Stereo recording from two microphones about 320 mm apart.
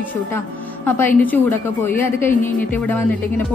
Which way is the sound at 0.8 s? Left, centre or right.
Centre.